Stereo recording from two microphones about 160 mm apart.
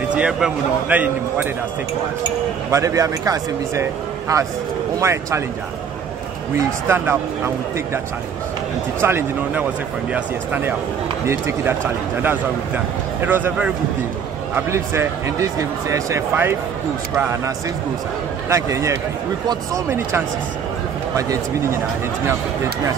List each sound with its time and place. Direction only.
0.1 s speech: 5° right (ahead or behind)
2.7 s speech: 20° right (ahead or behind)
5.0 s speech: 15° right (ahead or behind)
6.9 s speech: 15° right (ahead or behind)
9.0 s speech: 15° right (ahead or behind)
18.5 s speech: 20° right (ahead or behind)
21.2 s speech: 20° right (ahead or behind)